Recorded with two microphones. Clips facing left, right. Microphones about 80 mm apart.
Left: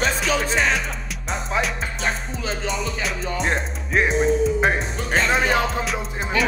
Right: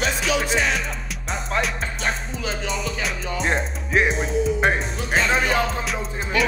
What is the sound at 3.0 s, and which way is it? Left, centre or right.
Music, centre.